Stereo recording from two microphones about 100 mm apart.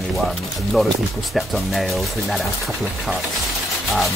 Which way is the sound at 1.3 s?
Centre (ahead or behind).